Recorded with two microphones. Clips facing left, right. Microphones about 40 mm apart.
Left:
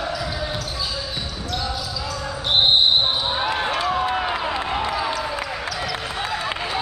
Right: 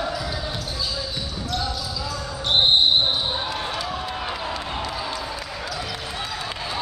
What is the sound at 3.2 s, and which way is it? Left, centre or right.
Basketball bounce, left.